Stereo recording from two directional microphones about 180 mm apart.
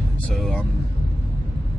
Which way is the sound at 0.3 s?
Centre (ahead or behind).